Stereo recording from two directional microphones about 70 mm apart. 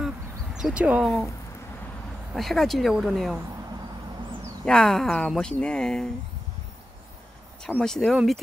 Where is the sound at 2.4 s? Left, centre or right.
Centre.